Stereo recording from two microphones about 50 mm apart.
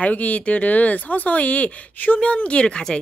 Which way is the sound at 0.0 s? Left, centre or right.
Left.